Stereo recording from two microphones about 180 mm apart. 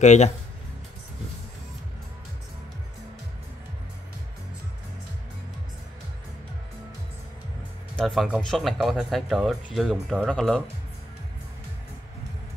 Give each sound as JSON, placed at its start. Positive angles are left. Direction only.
{"t": 0.0, "sound": "speech", "side_deg": 40}
{"t": 8.0, "sound": "speech", "side_deg": 0}